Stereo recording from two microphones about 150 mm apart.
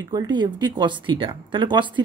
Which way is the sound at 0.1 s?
30° right (ahead or behind).